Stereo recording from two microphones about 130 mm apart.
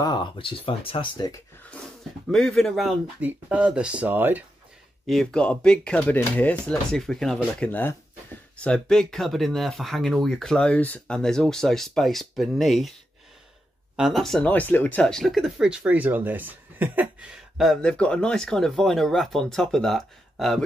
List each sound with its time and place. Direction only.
0.0 s speech: 35° left (ahead or behind)
2.3 s speech: 5° left (ahead or behind)
3.2 s speech: 10° right (ahead or behind)
5.0 s speech: 5° left (ahead or behind)
13.9 s speech: centre (ahead or behind)
14.5 s speech: 15° left (ahead or behind)